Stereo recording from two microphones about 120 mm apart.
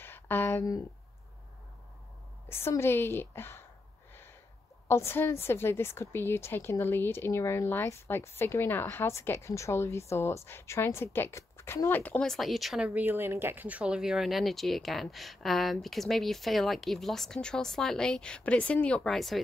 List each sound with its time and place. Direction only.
0.0 s a sound: 15° left (ahead or behind)
2.4 s a woman's voice: 20° left (ahead or behind)
4.8 s a woman's voice: 20° left (ahead or behind); by 19.4 s centre (ahead or behind)